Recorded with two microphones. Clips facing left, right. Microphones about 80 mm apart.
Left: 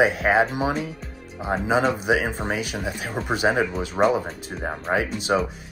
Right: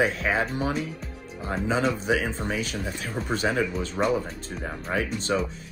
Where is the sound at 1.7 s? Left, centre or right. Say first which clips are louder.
Left 3 dB; left.